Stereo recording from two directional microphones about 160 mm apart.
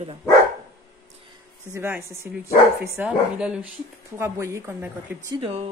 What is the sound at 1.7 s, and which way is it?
Speech, 15° right (ahead or behind).